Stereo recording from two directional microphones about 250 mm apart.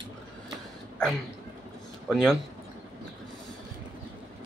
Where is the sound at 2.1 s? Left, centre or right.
Centre.